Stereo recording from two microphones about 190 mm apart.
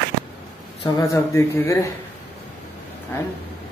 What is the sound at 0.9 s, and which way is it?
Speech, 15° left (ahead or behind).